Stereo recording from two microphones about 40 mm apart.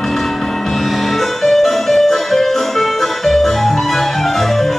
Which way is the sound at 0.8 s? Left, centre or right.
Centre.